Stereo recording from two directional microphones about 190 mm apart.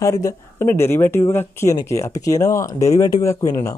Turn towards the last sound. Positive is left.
turn(degrees=15)  # may be behind; listen again after turning